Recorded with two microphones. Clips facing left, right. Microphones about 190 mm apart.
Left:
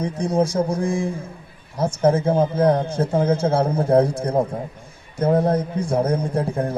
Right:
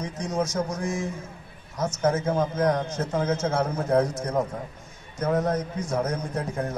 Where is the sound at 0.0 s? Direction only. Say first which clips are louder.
Left 7 dB; 30° left (ahead or behind).